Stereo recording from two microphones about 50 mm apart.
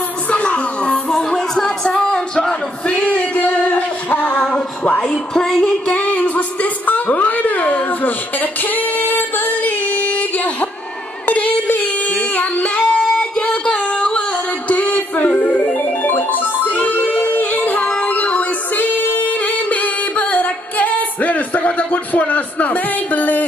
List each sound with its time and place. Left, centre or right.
0.3 s music: left
1.0 s music: centre
2.9 s music: left
5.0 s music: centre
5.9 s music: left
12.8 s a sound: centre
13.4 s a sound: left
14.7 s music: left
16.0 s music: left